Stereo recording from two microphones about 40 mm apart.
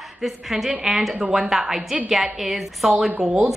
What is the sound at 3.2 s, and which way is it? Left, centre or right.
Speech, right.